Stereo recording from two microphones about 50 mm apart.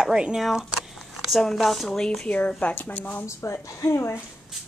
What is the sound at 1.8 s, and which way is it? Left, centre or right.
Speech, centre.